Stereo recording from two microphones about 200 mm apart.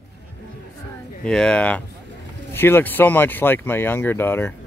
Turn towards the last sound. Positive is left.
turn(degrees=10)  # may be behind; listen again after turning